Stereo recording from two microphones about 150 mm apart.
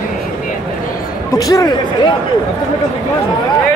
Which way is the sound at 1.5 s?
25° left (ahead or behind).